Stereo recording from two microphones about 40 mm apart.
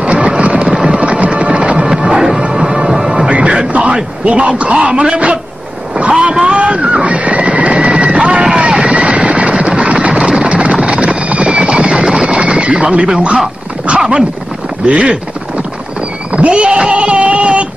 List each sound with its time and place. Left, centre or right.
0.0 s a sound: right
0.8 s music: right
3.3 s music: right
4.7 s a man's voice: right
5.9 s vehicle: right
6.4 s neigh: right
10.2 s vehicle: right
10.8 s horse: right
11.9 s music: centre
12.4 s horse: right
13.9 s dog: right
14.9 s speech: right
16.3 s a sound: right